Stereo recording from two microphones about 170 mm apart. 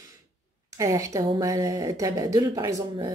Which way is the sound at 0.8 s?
20° right (ahead or behind).